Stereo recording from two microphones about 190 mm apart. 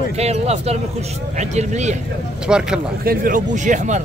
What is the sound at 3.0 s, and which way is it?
Speech, 50° right (ahead or behind).